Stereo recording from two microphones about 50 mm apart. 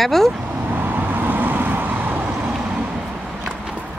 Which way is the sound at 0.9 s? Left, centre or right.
Right.